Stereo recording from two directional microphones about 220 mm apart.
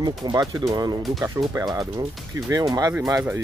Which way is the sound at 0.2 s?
15° right (ahead or behind).